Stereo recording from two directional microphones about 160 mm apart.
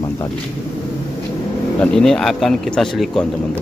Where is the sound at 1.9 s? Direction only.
5° left (ahead or behind).